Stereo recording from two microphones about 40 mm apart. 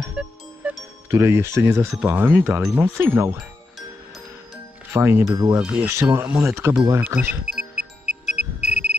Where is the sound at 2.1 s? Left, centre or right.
Right.